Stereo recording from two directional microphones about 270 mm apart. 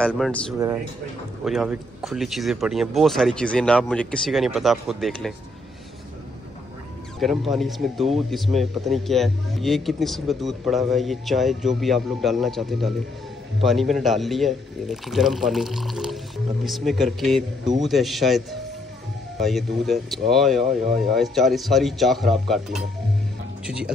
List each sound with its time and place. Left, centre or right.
0.0 s speech: centre
7.2 s speech: centre